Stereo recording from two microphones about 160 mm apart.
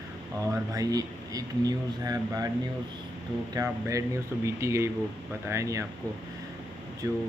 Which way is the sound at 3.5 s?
20° right (ahead or behind).